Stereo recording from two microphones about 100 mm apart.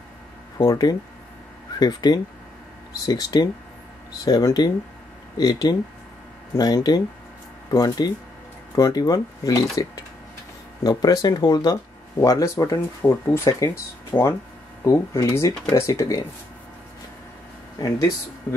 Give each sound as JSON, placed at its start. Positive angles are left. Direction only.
{"t": 0.7, "sound": "speech", "side_deg": 40}
{"t": 14.9, "sound": "speech", "side_deg": 30}